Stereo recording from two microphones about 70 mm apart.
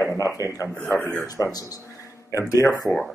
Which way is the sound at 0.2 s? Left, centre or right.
Right.